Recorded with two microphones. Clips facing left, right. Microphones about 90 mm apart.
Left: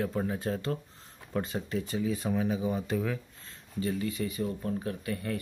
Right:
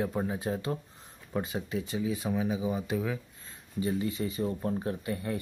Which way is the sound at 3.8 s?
25° right (ahead or behind).